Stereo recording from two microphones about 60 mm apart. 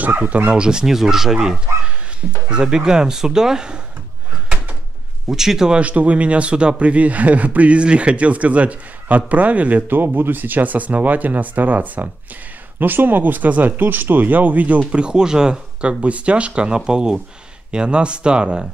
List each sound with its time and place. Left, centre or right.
0.0 s speech: right; by 3.8 s centre
5.3 s speech: centre
5.8 s speech: right
14.9 s speech: centre